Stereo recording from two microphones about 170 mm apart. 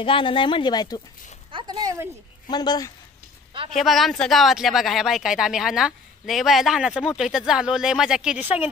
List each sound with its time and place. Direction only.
0.0 s speech: 30° left (ahead or behind)
1.5 s speech: 25° right (ahead or behind)
2.4 s speech: 25° left (ahead or behind)
3.7 s speech: centre (ahead or behind)